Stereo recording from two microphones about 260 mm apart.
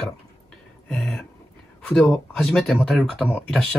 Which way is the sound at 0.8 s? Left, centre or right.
Centre.